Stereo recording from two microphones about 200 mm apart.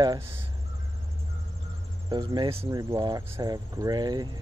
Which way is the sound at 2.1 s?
20° right (ahead or behind).